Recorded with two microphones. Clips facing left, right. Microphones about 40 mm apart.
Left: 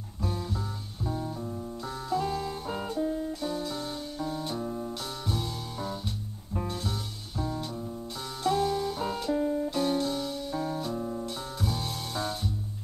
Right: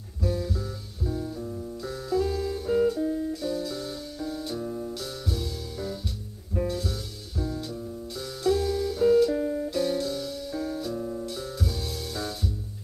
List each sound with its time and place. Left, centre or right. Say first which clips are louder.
0.2 s music: right 4 dB; centre
9.4 s music: even; centre
9.7 s music: right 1 dB; centre